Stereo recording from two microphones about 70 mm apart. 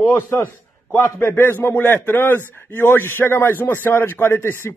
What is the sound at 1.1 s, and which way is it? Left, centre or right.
A man's voice, left.